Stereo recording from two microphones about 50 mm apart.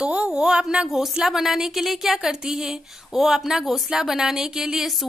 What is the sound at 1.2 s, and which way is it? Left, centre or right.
Speech, centre.